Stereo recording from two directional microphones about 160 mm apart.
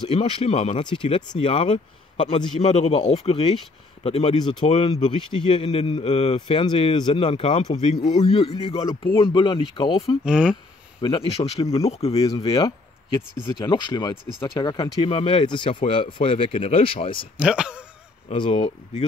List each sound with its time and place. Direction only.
0.1 s a man's voice: 35° left (ahead or behind)
10.2 s speech: 5° right (ahead or behind)
11.0 s a man's voice: 35° left (ahead or behind)
12.1 s a man's voice: 20° left (ahead or behind)
17.4 s speech: 5° right (ahead or behind)
18.3 s a man's voice: 35° left (ahead or behind)